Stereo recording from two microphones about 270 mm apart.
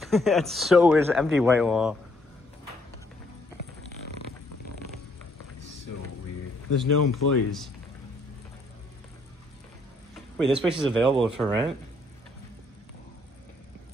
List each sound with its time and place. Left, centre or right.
0.0 s speech: centre
6.7 s speech: left
10.3 s speech: centre